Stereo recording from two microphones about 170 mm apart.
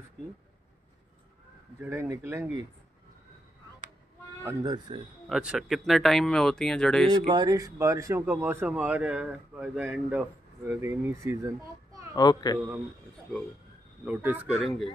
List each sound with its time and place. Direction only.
1.8 s speech: 15° right (ahead or behind)
4.4 s speech: 20° right (ahead or behind)
5.3 s speech: 5° right (ahead or behind)
7.1 s speech: 30° right (ahead or behind)
7.4 s speech: 20° right (ahead or behind)
12.2 s a child's voice: 25° left (ahead or behind)
14.0 s speech: 10° right (ahead or behind)